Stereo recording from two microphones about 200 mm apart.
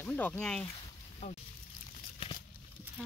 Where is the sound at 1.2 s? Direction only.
35° left (ahead or behind).